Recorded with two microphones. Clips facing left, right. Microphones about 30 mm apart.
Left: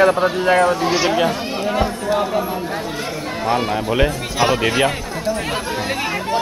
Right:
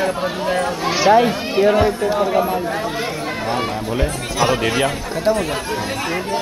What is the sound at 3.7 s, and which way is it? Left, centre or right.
Speech, left.